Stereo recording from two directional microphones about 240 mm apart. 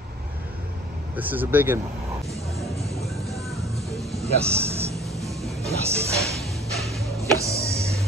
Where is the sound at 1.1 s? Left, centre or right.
Centre.